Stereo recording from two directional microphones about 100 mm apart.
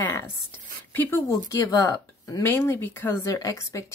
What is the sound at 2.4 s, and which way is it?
Speech, 25° left (ahead or behind).